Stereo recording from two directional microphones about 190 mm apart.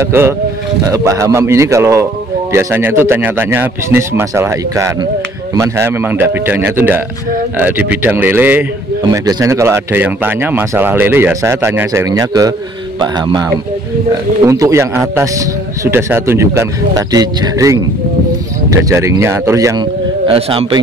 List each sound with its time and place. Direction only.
0.0 s speech: 10° right (ahead or behind)
20.2 s a man's voice: 30° right (ahead or behind)